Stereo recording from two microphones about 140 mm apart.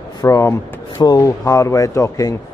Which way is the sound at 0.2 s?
20° left (ahead or behind).